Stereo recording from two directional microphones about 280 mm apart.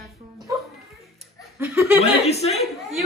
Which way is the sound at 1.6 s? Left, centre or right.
Centre.